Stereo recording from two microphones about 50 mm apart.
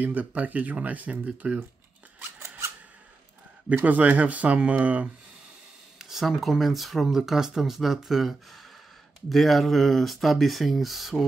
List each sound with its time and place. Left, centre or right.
0.0 s speech: right
3.8 s speech: right
5.9 s speech: centre